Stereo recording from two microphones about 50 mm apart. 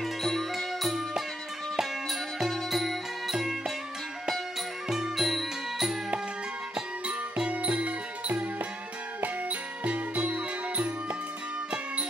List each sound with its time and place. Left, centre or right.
0.0 s music: centre
4.8 s music: centre
6.7 s music: right